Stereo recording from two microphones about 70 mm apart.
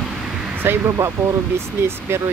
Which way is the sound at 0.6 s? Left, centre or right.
Right.